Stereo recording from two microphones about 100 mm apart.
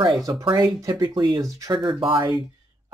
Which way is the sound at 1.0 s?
50° right (ahead or behind).